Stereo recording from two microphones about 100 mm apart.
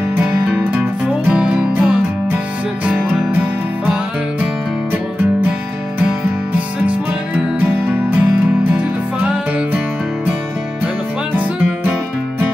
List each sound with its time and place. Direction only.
0.2 s music: 10° right (ahead or behind)
7.6 s music: 15° right (ahead or behind)